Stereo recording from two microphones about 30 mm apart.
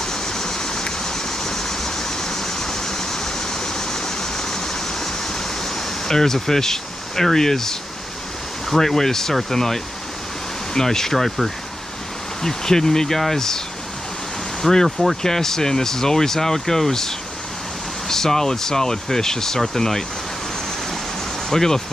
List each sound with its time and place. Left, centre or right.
0.0 s a sound: centre
5.8 s speech: centre
12.4 s speech: centre
14.6 s speech: centre
21.5 s speech: centre